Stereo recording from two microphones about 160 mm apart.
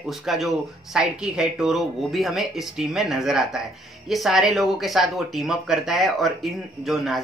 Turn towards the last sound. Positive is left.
turn(degrees=0)  # may be behind; listen again after turning